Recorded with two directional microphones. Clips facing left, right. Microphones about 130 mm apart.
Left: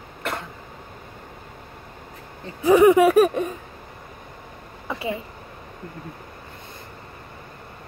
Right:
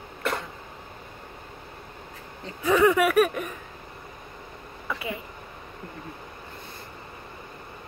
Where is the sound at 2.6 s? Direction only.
25° left (ahead or behind).